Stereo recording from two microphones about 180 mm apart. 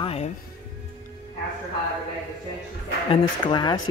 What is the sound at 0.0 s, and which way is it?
Music, 35° left (ahead or behind).